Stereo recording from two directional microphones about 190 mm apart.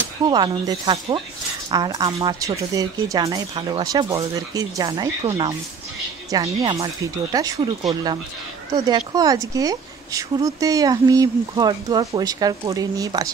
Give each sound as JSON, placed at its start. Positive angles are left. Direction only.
{"t": 0.3, "sound": "speech", "side_deg": -25}
{"t": 6.3, "sound": "speech", "side_deg": -20}